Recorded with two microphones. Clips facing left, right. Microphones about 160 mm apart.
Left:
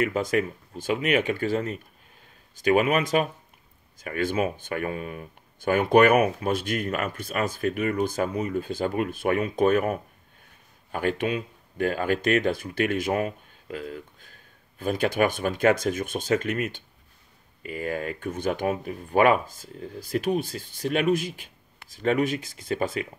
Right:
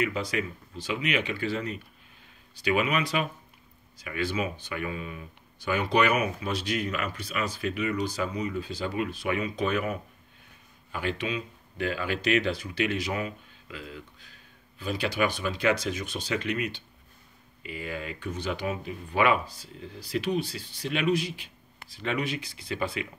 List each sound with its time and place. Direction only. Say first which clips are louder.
0.0 s speech: left 5 dB; 50° left (ahead or behind)